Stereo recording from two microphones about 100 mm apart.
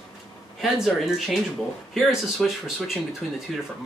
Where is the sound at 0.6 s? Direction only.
5° right (ahead or behind).